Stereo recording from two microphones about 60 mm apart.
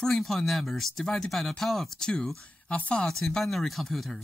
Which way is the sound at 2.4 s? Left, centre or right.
Left.